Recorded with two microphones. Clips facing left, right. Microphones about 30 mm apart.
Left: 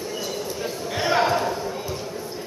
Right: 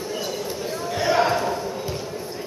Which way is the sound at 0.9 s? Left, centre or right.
Centre.